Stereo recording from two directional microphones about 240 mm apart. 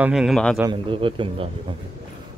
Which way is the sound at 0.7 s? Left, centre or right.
Right.